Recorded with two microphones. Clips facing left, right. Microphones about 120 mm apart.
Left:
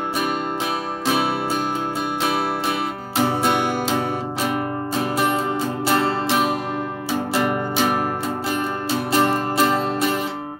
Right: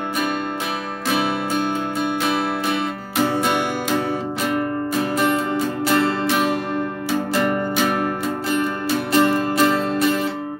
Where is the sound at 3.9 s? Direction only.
15° left (ahead or behind).